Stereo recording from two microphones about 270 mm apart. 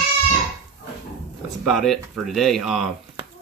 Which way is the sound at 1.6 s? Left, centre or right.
Centre.